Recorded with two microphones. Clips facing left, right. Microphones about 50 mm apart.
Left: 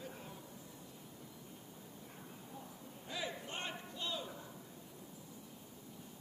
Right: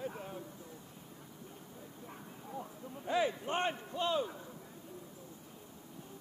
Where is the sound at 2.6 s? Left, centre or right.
Right.